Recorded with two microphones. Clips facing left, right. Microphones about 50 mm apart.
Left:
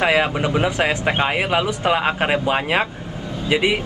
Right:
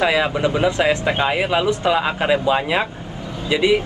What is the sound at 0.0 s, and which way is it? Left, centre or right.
Speech, left.